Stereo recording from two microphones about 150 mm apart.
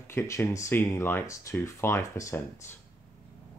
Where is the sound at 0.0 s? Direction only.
15° left (ahead or behind).